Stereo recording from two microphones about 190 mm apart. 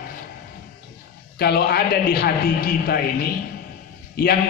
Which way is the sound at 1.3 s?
55° left (ahead or behind).